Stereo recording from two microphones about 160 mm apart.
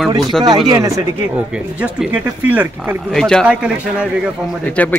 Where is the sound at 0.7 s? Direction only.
20° right (ahead or behind).